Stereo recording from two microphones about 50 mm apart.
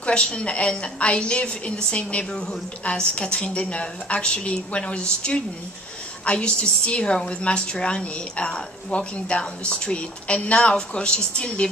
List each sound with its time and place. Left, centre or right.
0.0 s a woman's voice: left